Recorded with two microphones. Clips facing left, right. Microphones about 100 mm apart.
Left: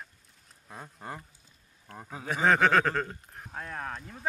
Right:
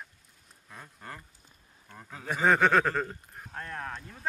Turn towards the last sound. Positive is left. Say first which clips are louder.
# left 1 dB
turn(degrees=5)  # may be behind; listen again after turning